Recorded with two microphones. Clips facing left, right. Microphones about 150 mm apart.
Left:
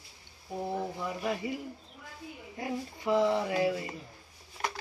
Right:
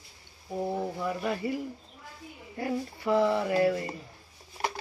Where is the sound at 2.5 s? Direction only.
15° left (ahead or behind).